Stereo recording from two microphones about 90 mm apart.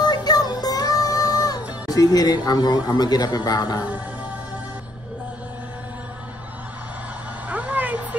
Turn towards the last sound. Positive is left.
turn(degrees=-20)  # may be behind; listen again after turning